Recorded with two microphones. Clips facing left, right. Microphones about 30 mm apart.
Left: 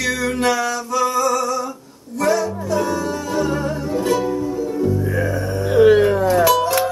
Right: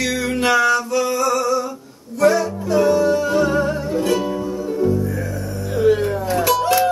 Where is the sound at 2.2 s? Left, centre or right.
Centre.